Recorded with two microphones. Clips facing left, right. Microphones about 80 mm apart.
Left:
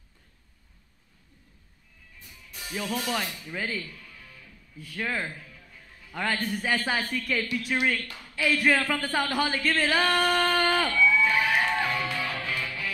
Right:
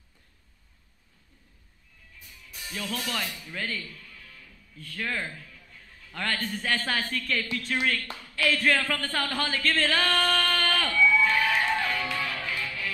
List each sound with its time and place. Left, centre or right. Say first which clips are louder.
2.2 s speech: left 1 dB; centre
7.0 s speech: left 1 dB; left
8.4 s a sound: left 1 dB; centre